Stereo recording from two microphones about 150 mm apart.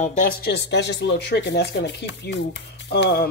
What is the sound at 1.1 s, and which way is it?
Speech, 90° left.